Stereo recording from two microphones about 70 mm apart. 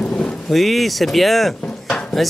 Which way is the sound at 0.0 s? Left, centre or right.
Centre.